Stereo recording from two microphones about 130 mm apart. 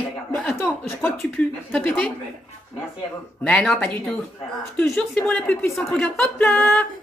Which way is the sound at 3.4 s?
10° left (ahead or behind).